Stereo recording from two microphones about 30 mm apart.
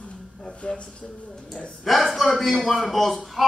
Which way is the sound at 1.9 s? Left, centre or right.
Centre.